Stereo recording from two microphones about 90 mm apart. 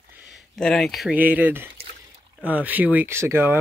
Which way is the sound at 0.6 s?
5° left (ahead or behind).